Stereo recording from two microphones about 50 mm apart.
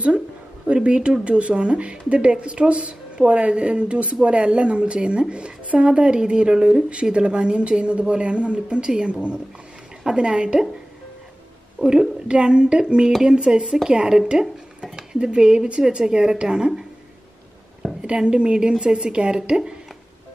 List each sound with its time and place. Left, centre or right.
0.7 s speech: right
11.8 s speech: centre
18.0 s speech: centre